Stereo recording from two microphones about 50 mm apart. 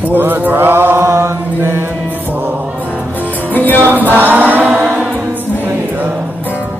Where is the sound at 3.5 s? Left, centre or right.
Left.